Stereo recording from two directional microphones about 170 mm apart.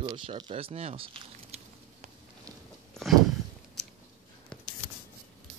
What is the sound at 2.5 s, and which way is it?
Biting, 20° right (ahead or behind).